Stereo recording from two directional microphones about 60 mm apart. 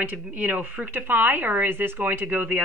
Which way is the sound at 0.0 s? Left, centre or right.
Right.